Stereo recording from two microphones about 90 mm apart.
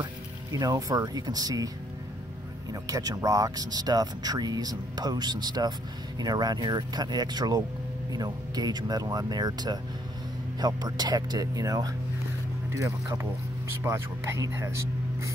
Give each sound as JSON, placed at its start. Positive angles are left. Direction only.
{"t": 0.0, "sound": "speech", "side_deg": -40}
{"t": 2.7, "sound": "speech", "side_deg": -45}